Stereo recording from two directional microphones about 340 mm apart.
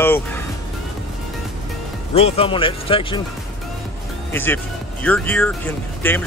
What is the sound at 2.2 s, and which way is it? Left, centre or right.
Speech, centre.